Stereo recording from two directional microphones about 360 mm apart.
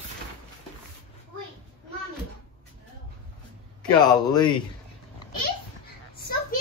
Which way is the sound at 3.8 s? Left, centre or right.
Centre.